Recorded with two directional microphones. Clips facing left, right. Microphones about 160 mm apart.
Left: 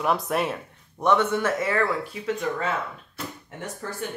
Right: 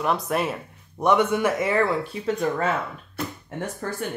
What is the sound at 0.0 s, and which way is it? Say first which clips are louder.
Speech: even; centre (ahead or behind).